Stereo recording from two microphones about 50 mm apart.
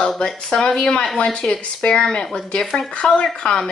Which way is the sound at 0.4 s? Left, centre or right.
Centre.